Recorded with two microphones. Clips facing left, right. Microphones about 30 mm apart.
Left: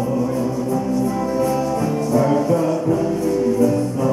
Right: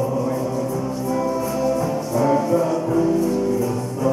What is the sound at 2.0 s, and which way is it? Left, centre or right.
Music, centre.